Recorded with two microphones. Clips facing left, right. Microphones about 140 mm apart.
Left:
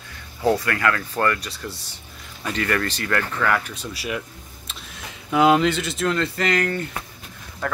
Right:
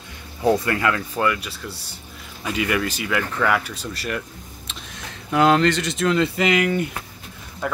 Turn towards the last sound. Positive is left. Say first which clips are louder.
# right 1 dB
turn(degrees=-10)  # may be behind; listen again after turning